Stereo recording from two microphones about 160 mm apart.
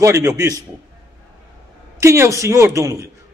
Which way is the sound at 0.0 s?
20° right (ahead or behind).